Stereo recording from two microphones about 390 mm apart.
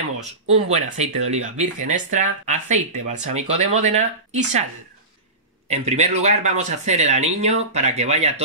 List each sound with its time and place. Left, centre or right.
0.2 s speech: centre
5.7 s speech: centre